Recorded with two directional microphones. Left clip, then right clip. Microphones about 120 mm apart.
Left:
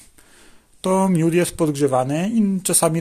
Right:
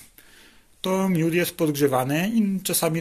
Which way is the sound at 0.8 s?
60° left (ahead or behind).